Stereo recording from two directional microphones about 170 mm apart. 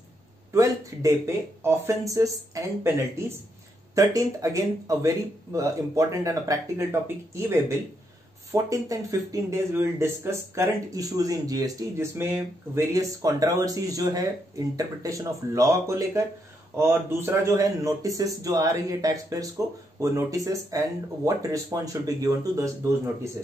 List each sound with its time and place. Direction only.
0.5 s a man's voice: 20° right (ahead or behind)